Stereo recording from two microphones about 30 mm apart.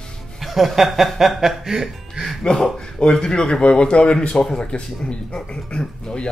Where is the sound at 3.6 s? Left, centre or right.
Left.